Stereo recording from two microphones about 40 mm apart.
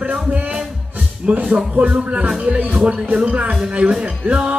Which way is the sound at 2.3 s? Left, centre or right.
Centre.